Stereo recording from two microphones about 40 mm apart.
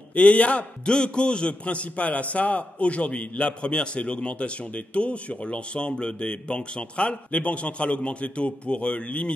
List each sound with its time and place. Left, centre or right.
0.1 s a man's voice: left